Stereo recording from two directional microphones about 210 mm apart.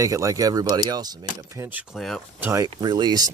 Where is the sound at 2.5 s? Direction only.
15° right (ahead or behind).